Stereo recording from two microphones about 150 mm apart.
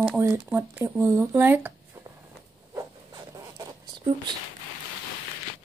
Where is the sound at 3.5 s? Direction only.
30° right (ahead or behind).